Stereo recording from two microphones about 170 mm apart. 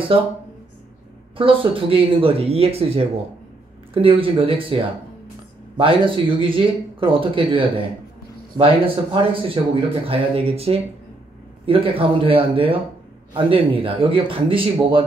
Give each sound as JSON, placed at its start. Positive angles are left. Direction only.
{"t": 1.3, "sound": "speech", "side_deg": -30}